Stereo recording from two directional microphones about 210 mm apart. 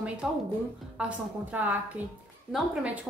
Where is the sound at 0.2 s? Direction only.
5° right (ahead or behind).